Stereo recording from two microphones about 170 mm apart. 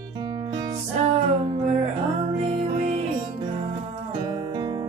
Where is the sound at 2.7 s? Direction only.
40° right (ahead or behind).